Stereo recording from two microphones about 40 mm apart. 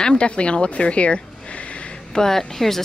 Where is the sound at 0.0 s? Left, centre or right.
Left.